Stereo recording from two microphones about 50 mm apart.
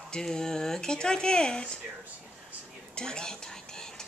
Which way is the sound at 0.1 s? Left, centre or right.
Centre.